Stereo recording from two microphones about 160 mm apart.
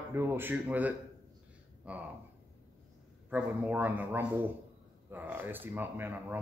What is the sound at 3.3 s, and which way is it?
A man's voice, 10° right (ahead or behind).